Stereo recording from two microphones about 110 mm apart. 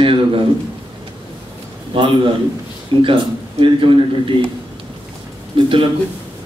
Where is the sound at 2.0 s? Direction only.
50° right (ahead or behind).